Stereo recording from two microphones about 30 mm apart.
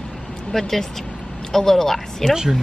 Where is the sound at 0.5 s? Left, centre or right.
Centre.